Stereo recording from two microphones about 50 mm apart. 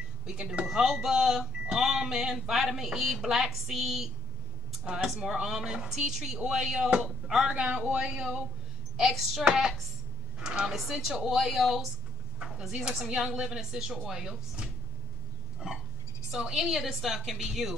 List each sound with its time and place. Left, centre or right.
0.7 s speech: centre
7.4 s speech: right
9.0 s speech: centre
9.5 s speech: centre
10.7 s speech: centre
12.7 s speech: centre
16.3 s speech: centre